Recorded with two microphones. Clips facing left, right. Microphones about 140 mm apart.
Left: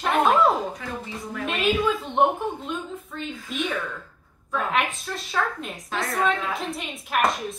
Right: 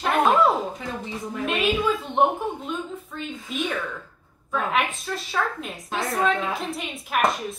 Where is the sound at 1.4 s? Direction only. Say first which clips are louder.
Even; centre (ahead or behind).